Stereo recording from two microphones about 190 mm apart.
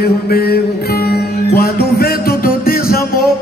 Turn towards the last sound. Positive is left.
turn(degrees=50)  # may be behind; listen again after turning